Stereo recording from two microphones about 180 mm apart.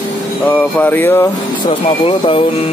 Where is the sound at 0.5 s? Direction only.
10° left (ahead or behind).